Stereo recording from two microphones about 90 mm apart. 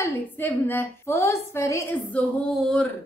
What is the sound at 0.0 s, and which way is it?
A woman's voice, 25° left (ahead or behind).